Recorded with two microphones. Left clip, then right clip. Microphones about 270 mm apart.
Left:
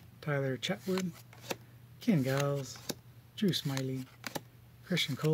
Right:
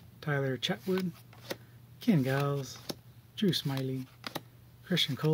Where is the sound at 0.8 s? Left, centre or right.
Centre.